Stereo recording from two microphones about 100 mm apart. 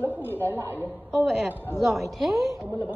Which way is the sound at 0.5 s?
20° right (ahead or behind).